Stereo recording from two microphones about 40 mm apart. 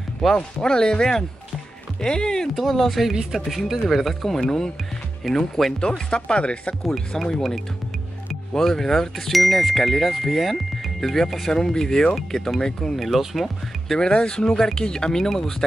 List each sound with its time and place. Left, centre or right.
0.2 s speech: centre
0.6 s speech: centre
2.5 s speech: centre
5.8 s speech: left
6.9 s speech: centre
13.0 s speech: centre
13.9 s speech: left